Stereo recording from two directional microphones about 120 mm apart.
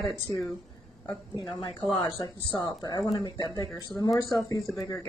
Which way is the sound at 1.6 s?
40° left (ahead or behind).